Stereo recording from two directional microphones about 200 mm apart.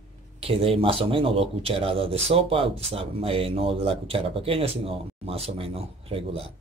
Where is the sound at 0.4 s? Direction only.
30° right (ahead or behind).